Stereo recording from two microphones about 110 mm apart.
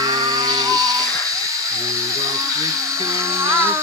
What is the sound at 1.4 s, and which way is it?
Dental drill, 30° right (ahead or behind).